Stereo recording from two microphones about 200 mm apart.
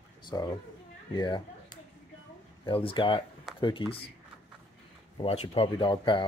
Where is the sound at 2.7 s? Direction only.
25° left (ahead or behind).